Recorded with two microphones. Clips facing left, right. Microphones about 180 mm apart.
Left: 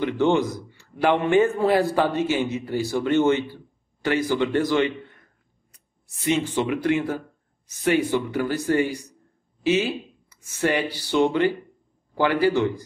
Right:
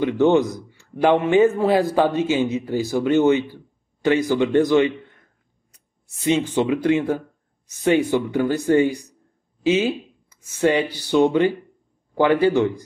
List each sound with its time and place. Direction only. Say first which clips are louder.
0.0 s a man's voice: right 4 dB; 20° right (ahead or behind)
6.2 s speech: right 3 dB; 20° right (ahead or behind)